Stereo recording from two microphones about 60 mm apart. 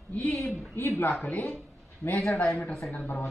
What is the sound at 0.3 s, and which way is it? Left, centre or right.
Speech, centre.